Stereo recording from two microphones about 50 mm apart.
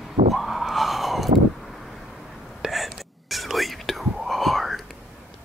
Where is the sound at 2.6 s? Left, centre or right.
Centre.